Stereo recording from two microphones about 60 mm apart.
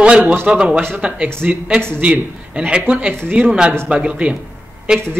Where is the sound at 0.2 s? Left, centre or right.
Right.